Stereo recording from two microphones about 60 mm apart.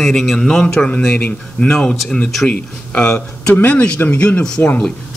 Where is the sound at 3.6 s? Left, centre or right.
Left.